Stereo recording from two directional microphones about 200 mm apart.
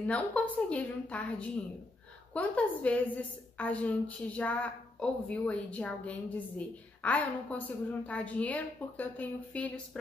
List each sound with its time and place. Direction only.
0.0 s a woman's voice: 5° left (ahead or behind)